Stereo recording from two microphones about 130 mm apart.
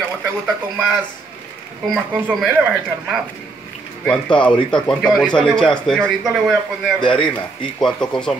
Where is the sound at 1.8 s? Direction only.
Centre (ahead or behind).